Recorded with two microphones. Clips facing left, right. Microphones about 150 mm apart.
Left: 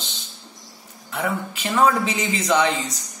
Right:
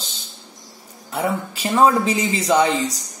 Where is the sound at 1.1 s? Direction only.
35° right (ahead or behind).